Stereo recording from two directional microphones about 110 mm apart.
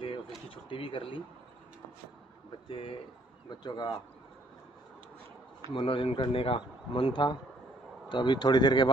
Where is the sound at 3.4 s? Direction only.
45° left (ahead or behind).